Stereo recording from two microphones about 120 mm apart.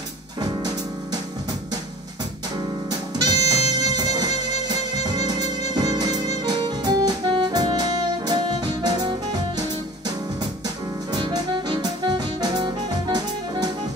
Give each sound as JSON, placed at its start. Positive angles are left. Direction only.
{"t": 0.4, "sound": "music", "side_deg": -35}
{"t": 2.9, "sound": "music", "side_deg": -35}